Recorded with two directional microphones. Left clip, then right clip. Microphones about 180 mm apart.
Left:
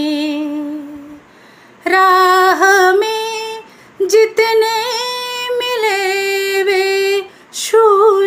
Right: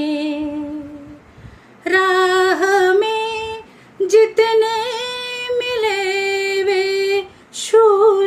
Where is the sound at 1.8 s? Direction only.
15° right (ahead or behind).